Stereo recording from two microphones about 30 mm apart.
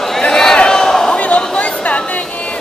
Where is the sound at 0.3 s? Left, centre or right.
Centre.